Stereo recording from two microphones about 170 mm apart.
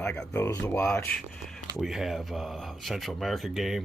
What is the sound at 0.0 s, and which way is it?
Speech, 10° left (ahead or behind).